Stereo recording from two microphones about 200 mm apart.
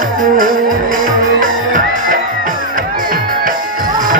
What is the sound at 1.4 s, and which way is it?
Music, 40° right (ahead or behind).